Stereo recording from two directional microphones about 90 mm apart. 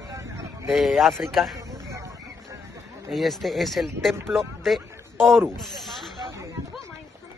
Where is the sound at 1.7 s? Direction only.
35° right (ahead or behind).